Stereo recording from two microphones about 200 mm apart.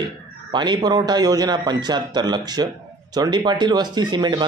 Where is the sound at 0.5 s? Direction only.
20° right (ahead or behind).